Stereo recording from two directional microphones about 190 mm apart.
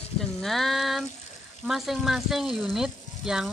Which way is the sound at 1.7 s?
Centre (ahead or behind).